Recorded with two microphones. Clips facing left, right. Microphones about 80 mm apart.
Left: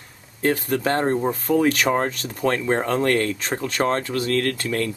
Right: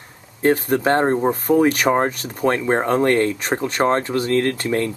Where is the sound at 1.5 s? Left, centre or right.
Centre.